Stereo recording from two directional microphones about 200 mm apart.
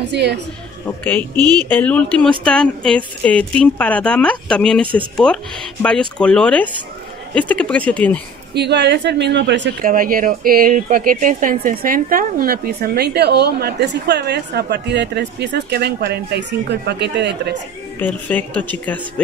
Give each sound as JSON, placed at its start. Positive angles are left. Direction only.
{"t": 0.1, "sound": "speech", "side_deg": -55}
{"t": 0.8, "sound": "speech", "side_deg": 10}
{"t": 8.5, "sound": "speech", "side_deg": -60}
{"t": 9.8, "sound": "speech", "side_deg": -45}
{"t": 18.0, "sound": "speech", "side_deg": 10}